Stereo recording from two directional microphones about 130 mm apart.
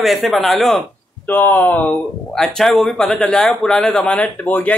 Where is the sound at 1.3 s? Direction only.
15° left (ahead or behind).